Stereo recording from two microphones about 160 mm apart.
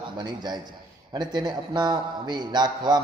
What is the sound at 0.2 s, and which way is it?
A man's voice, 25° right (ahead or behind).